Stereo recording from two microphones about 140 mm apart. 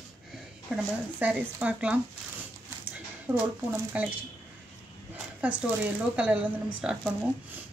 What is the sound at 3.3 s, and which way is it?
Speech, 15° right (ahead or behind).